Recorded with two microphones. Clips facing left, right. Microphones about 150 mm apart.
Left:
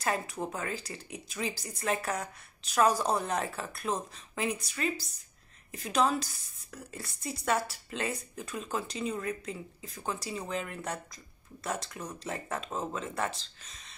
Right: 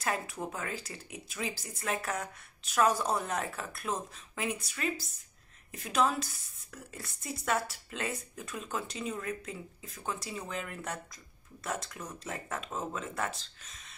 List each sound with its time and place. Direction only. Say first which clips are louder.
0.0 s speech: left 2 dB; centre (ahead or behind)